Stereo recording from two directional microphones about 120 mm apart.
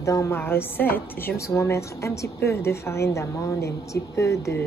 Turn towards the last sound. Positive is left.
turn(degrees=25)  # may be behind; listen again after turning